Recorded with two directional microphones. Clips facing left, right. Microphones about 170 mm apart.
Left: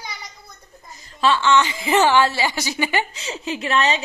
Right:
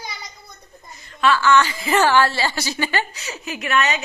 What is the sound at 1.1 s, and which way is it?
A woman's voice, 25° left (ahead or behind).